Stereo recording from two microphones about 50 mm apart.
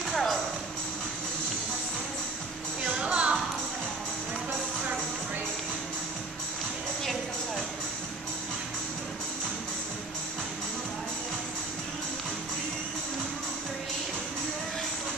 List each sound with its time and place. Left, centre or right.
0.1 s music: centre
2.8 s music: centre